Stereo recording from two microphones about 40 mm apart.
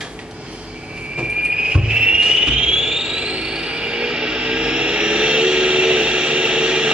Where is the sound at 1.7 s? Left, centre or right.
Right.